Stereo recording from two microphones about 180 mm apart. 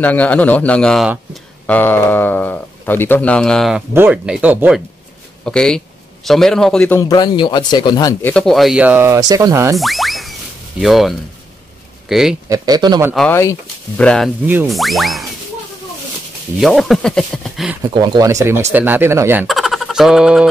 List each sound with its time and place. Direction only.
0.0 s speech: 10° left (ahead or behind)
1.7 s speech: 10° left (ahead or behind); by 4.8 s 5° right (ahead or behind)
5.4 s speech: 5° left (ahead or behind)
7.0 s speech: 20° left (ahead or behind)
8.2 s speech: 5° left (ahead or behind); by 9.8 s 15° right (ahead or behind)
9.8 s music: centre (ahead or behind)
10.8 s speech: centre (ahead or behind)
12.4 s speech: 20° right (ahead or behind)
13.3 s speech: 15° left (ahead or behind)
14.4 s speech: 10° right (ahead or behind)
16.5 s speech: centre (ahead or behind)
17.8 s speech: 25° right (ahead or behind)
19.4 s speech: centre (ahead or behind)